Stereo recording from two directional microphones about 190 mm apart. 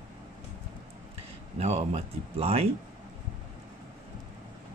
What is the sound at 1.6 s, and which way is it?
Speech, 35° right (ahead or behind).